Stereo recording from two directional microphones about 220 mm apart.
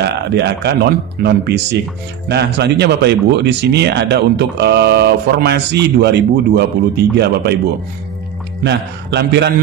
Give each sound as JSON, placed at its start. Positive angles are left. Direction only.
{"t": 0.0, "sound": "speech", "side_deg": -50}
{"t": 8.6, "sound": "speech", "side_deg": -50}